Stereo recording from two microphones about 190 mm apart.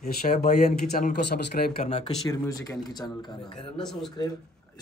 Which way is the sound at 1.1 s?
60° left (ahead or behind).